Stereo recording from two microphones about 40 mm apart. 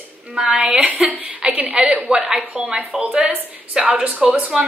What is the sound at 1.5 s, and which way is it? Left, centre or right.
A woman's voice, right.